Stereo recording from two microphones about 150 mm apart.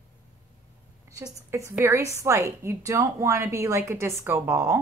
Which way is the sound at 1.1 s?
20° right (ahead or behind).